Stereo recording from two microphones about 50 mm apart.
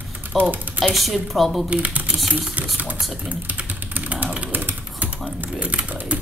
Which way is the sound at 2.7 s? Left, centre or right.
Right.